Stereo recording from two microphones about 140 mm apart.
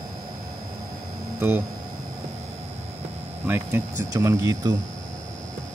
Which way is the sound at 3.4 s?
15° right (ahead or behind).